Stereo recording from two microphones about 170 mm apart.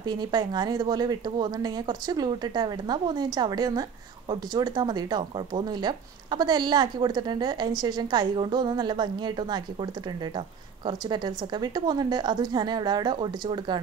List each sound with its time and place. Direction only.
0.0 s speech: 25° right (ahead or behind)
10.9 s speech: 25° right (ahead or behind)